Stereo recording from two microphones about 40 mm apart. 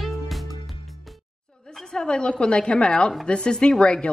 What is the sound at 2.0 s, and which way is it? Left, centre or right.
A man's voice, left.